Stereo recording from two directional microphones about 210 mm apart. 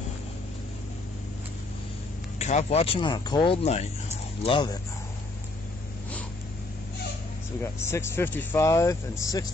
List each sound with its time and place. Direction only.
2.3 s speech: 30° left (ahead or behind)
7.6 s speech: 10° left (ahead or behind)